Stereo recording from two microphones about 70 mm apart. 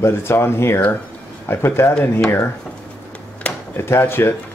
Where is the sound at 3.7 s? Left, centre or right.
Left.